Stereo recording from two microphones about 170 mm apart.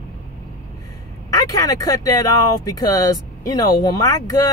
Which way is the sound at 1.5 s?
20° left (ahead or behind).